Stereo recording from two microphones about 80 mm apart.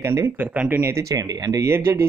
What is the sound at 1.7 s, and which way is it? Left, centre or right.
Speech, right.